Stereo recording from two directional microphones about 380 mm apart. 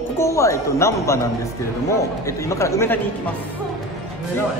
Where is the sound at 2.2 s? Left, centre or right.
Centre.